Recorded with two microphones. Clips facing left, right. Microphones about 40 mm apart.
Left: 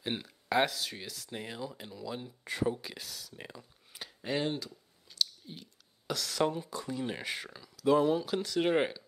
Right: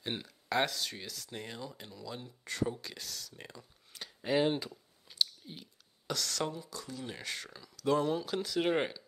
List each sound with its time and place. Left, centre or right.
0.0 s speech: centre
4.2 s speech: centre
4.5 s clicking: right
6.0 s speech: centre
6.4 s speech: left; by 9.0 s centre